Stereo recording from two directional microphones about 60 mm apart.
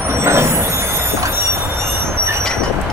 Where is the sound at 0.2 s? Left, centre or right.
Right.